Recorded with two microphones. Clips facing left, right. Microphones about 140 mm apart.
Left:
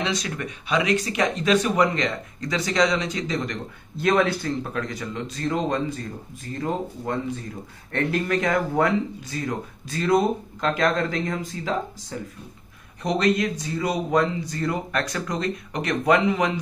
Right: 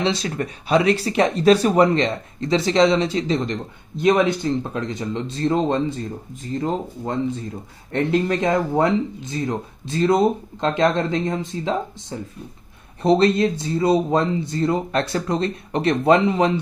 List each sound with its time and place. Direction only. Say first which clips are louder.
0.0 s speech: right 5 dB; 30° right (ahead or behind)